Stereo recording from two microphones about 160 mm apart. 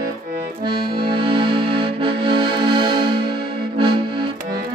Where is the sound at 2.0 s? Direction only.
35° right (ahead or behind).